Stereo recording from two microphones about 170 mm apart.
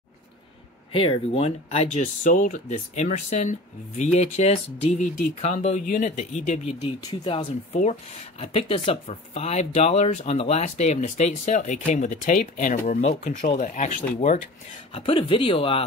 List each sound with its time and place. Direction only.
0.9 s speech: 35° left (ahead or behind)
2.2 s speech: 50° left (ahead or behind)
8.4 s speech: 35° left (ahead or behind)
15.0 s speech: 30° left (ahead or behind)